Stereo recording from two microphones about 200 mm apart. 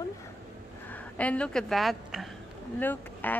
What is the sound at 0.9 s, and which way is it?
A woman's voice, 5° left (ahead or behind).